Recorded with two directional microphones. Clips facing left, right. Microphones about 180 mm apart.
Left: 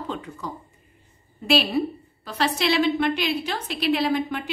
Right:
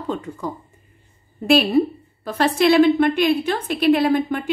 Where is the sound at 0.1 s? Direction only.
45° right (ahead or behind).